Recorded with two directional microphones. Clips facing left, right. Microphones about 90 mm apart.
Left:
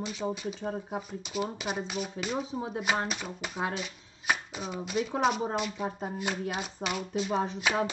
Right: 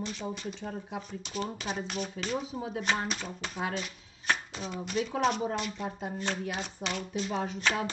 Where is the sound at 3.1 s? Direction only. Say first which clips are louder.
Left 1 dB; 5° left (ahead or behind).